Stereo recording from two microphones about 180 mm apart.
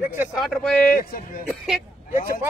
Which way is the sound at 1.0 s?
55° left (ahead or behind).